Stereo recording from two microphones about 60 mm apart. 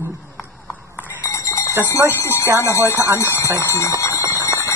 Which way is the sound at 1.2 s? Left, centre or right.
Left.